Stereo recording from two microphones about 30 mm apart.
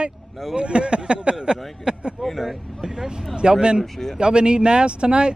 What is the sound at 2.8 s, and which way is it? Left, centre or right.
Speech, right.